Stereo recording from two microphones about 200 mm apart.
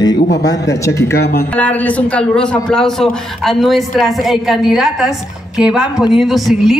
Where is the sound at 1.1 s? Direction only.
50° left (ahead or behind).